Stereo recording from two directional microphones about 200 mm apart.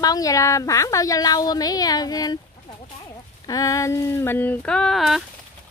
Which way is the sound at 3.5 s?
15° left (ahead or behind).